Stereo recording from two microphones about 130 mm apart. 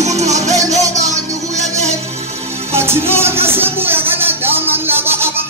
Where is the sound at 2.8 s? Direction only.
20° right (ahead or behind).